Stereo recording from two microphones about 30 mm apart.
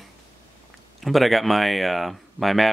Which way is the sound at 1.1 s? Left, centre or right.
Centre.